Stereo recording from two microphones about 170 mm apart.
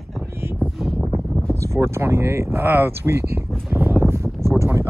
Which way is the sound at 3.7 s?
10° right (ahead or behind).